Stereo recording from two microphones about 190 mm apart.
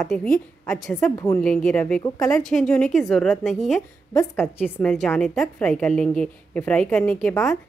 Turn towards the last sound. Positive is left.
turn(degrees=5)  # may be behind; listen again after turning